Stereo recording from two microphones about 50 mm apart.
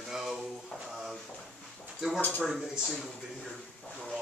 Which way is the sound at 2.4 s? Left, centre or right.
Centre.